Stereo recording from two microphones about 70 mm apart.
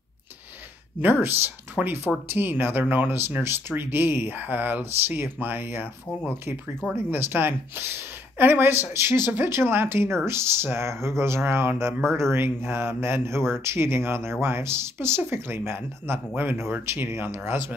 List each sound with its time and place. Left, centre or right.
1.0 s speech: right
1.8 s speech: centre
2.2 s speech: right
7.1 s a woman's voice: right